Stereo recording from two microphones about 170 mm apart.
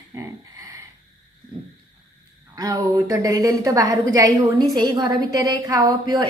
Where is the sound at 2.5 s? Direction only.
20° right (ahead or behind).